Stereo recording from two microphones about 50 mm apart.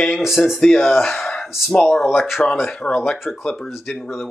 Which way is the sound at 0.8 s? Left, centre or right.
Centre.